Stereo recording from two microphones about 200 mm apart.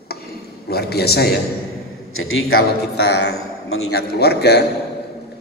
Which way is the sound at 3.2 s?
90° left.